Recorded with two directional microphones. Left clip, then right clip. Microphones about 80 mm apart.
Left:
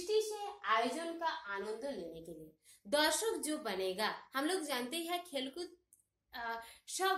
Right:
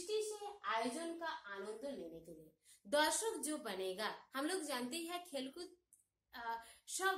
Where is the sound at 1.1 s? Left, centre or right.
Centre.